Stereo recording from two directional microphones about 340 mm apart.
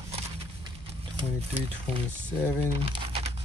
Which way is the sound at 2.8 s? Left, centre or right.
Centre.